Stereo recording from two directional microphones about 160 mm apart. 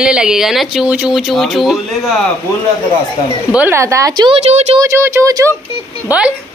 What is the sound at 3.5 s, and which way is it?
A woman's voice, 15° right (ahead or behind).